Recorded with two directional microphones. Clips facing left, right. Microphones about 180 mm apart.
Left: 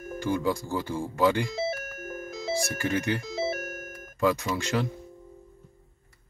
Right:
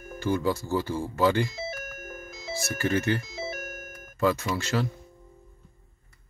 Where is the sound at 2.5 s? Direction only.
15° left (ahead or behind).